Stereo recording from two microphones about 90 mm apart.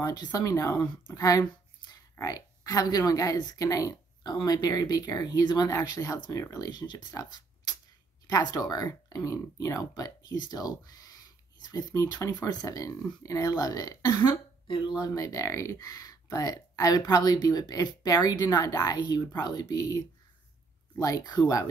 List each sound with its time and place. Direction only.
0.0 s speech: 45° left (ahead or behind)
1.0 s a sound: 45° left (ahead or behind)
2.1 s speech: 45° left (ahead or behind)
21.0 s speech: 45° left (ahead or behind)